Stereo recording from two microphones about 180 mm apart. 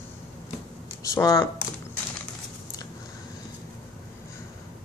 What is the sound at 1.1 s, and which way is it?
Speech, 20° left (ahead or behind).